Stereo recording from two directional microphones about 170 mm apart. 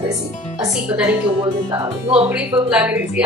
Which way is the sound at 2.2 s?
10° right (ahead or behind).